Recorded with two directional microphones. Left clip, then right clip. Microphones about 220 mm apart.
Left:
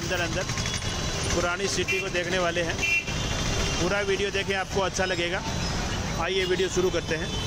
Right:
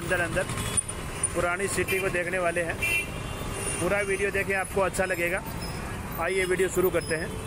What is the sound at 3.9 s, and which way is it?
Speech, 10° left (ahead or behind).